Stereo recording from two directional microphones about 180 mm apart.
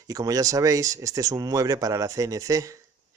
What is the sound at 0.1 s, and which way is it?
Speech, 20° right (ahead or behind).